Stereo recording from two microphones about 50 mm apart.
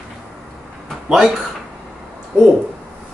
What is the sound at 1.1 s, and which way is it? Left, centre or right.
Speech, centre.